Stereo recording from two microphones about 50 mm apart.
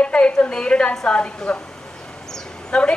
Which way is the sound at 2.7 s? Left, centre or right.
Centre.